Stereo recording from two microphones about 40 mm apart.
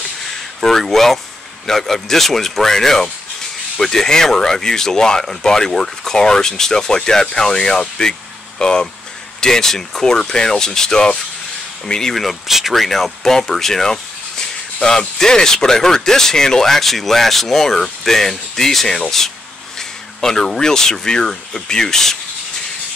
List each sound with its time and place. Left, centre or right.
0.6 s a sound: centre
1.7 s speech: centre
12.2 s speech: centre